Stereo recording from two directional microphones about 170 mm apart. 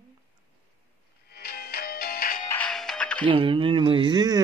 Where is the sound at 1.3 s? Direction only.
65° left (ahead or behind).